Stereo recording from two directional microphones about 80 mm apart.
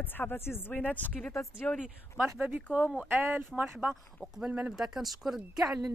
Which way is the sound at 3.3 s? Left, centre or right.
Right.